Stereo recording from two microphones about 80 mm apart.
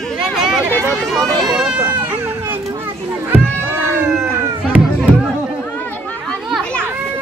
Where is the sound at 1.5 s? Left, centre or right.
Centre.